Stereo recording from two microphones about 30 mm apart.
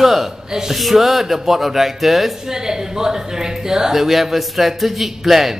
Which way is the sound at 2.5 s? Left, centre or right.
Centre.